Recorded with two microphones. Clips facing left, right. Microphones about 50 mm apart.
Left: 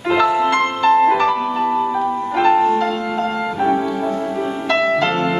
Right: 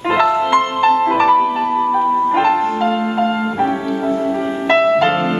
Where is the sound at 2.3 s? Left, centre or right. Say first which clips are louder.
Left 1 dB; right.